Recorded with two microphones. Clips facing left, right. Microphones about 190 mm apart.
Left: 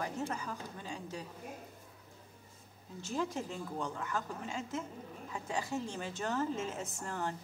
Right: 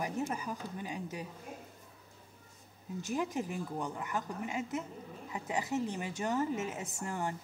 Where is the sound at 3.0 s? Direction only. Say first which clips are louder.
Right 2 dB; 15° right (ahead or behind).